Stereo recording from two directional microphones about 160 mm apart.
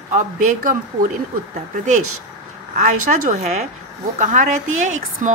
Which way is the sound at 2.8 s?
50° right (ahead or behind).